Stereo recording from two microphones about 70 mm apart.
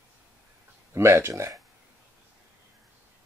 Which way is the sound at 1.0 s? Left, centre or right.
Right.